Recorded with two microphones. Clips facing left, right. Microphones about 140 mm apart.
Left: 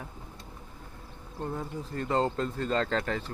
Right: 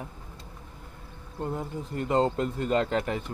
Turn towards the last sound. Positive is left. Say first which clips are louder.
# right 3 dB
turn(degrees=-15)  # may be behind; listen again after turning